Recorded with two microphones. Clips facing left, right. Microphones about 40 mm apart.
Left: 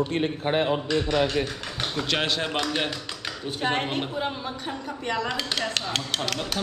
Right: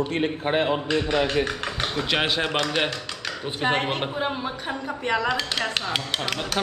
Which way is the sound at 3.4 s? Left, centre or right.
Centre.